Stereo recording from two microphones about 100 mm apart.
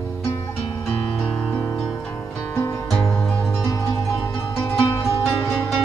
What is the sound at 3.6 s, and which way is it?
Music, 30° left (ahead or behind).